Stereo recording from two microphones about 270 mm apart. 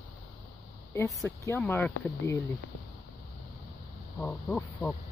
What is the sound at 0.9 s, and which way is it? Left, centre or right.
Speech, centre.